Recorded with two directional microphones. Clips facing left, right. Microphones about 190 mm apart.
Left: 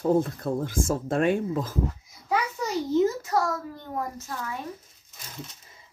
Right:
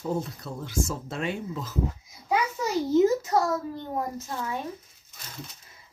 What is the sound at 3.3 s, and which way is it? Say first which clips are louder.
Speech: right 1 dB; 20° right (ahead or behind).